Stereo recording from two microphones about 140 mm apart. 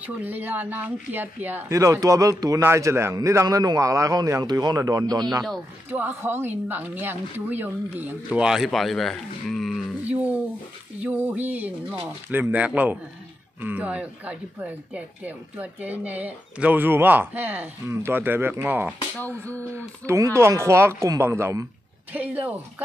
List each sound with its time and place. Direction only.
0.0 s speech: 10° right (ahead or behind); by 5.5 s 30° right (ahead or behind)
5.9 s speech: 15° right (ahead or behind)
19.1 s speech: 10° left (ahead or behind)
20.1 s speech: 20° right (ahead or behind)